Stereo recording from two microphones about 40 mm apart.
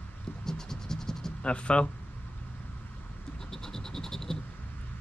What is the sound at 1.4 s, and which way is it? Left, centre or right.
Speech, left.